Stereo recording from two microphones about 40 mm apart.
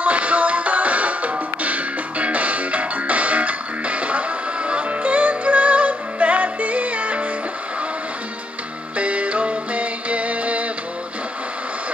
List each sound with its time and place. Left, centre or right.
0.0 s music: right
8.9 s music: right